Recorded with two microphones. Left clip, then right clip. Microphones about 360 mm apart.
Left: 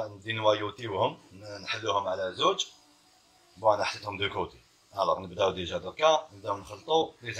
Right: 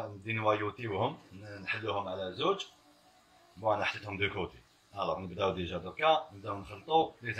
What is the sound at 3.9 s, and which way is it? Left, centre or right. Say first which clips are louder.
A man's voice: left 2 dB; left.